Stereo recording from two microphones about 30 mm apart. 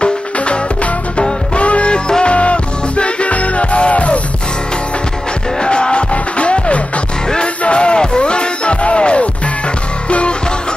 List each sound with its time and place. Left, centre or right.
1.6 s music: left
5.6 s music: left